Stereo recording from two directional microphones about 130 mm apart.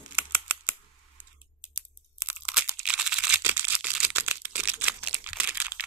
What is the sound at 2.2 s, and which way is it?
Crunch, 10° right (ahead or behind).